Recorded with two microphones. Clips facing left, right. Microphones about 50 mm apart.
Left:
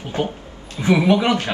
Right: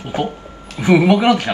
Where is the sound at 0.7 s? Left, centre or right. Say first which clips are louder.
Right 3 dB; right.